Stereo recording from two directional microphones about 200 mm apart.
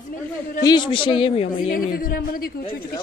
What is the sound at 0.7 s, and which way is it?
Speech, 25° left (ahead or behind).